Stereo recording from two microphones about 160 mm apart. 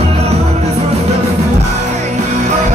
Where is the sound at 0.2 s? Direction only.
40° right (ahead or behind).